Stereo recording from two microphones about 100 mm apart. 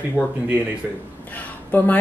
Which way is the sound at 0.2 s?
15° right (ahead or behind).